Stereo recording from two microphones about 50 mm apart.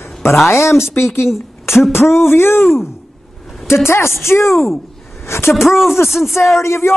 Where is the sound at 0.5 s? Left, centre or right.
Left.